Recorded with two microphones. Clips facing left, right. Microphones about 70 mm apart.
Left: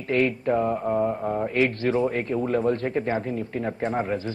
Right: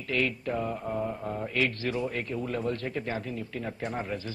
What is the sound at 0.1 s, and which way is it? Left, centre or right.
A man's voice, left.